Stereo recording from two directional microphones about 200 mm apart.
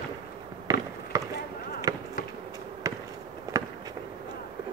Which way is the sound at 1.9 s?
20° right (ahead or behind).